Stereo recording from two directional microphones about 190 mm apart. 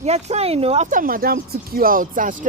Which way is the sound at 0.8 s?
45° right (ahead or behind).